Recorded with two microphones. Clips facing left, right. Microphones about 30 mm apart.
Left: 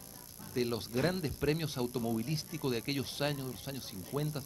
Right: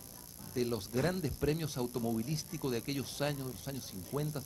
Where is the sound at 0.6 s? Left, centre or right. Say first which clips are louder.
Left 1 dB; left.